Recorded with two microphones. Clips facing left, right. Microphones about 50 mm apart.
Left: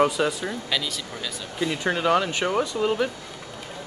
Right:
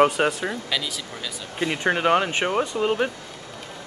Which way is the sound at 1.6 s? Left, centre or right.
Right.